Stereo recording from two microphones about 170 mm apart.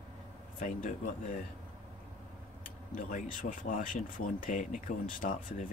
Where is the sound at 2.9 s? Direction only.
50° left (ahead or behind).